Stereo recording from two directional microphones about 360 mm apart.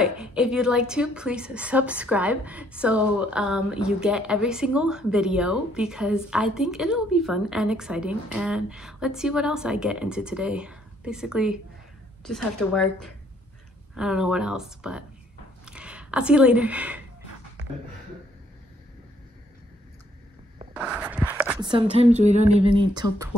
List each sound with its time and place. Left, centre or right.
0.0 s a woman's voice: centre
15.6 s a sound: centre
20.7 s speech: centre